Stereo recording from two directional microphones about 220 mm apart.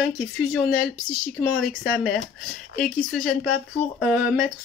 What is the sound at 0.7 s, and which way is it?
Speech, 40° left (ahead or behind).